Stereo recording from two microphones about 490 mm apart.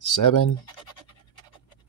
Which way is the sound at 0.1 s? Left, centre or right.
Left.